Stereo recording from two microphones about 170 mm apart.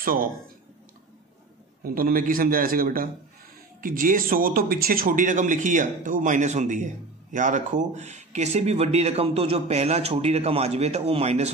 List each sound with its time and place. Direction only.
0.0 s speech: 55° right (ahead or behind)
1.9 s a man's voice: 55° right (ahead or behind); by 11.5 s 40° right (ahead or behind)